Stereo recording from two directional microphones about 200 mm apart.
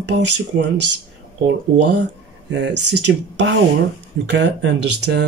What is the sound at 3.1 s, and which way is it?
Speech, 65° right (ahead or behind).